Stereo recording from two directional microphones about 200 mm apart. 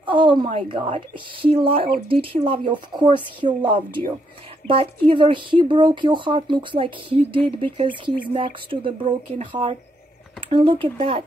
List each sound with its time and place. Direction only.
0.0 s a woman's voice: 25° right (ahead or behind)